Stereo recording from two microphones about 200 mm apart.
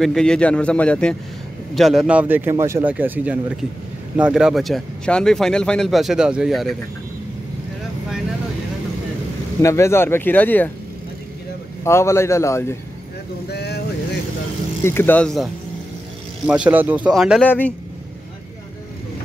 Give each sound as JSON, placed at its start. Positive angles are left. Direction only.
{"t": 0.0, "sound": "speech", "side_deg": 5}
{"t": 9.6, "sound": "speech", "side_deg": 15}
{"t": 11.8, "sound": "speech", "side_deg": 15}
{"t": 13.5, "sound": "vehicle", "side_deg": 55}
{"t": 14.8, "sound": "speech", "side_deg": 10}